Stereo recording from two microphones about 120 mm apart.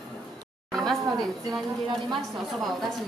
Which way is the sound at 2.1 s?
Centre (ahead or behind).